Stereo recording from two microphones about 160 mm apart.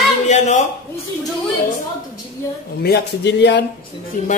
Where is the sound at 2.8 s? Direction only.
85° left.